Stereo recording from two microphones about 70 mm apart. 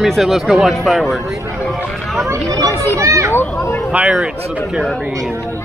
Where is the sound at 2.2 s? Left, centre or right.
Right.